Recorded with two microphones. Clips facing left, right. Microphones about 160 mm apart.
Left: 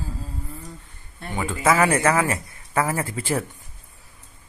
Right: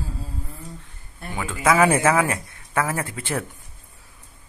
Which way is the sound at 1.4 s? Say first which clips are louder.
Right 1 dB; centre (ahead or behind).